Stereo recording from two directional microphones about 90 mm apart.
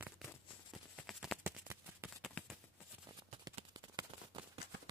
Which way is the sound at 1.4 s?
25° right (ahead or behind).